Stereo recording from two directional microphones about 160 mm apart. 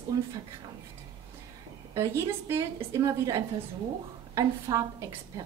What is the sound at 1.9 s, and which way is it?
A woman's voice, 15° right (ahead or behind).